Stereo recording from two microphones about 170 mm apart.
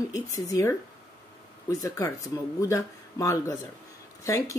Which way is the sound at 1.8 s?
20° left (ahead or behind).